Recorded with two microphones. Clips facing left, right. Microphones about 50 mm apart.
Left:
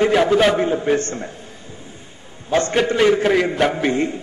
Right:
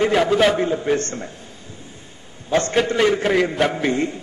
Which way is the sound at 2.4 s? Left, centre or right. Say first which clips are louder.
Left 1 dB; left.